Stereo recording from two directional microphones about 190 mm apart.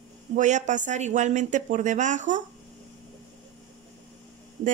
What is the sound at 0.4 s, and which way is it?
Speech, 40° right (ahead or behind).